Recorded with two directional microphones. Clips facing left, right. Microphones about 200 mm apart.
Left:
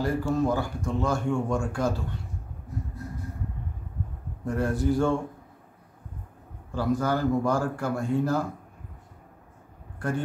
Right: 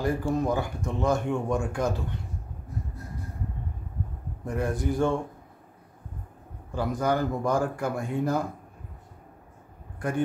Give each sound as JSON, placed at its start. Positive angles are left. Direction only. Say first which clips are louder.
{"t": 0.0, "sound": "speech", "louder": "left 1 dB", "side_deg": -15}
{"t": 4.6, "sound": "speech", "louder": "left 2 dB", "side_deg": -15}
{"t": 6.7, "sound": "speech", "louder": "left 1 dB", "side_deg": -15}
{"t": 9.9, "sound": "speech", "louder": "right 1 dB", "side_deg": -15}